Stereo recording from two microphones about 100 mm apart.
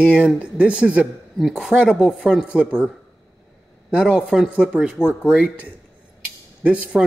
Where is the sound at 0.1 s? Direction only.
10° right (ahead or behind).